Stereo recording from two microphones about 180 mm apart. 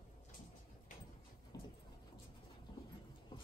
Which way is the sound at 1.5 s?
20° left (ahead or behind).